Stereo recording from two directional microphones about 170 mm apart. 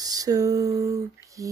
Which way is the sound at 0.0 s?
20° right (ahead or behind).